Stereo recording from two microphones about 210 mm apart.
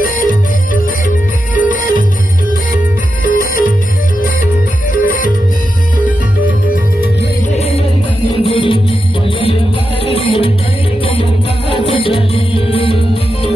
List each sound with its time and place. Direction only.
0.0 s music: 40° left (ahead or behind)
3.3 s music: 40° left (ahead or behind)
5.0 s music: 40° left (ahead or behind)
8.4 s music: 25° left (ahead or behind)
10.0 s music: 25° left (ahead or behind)
11.7 s music: 25° left (ahead or behind)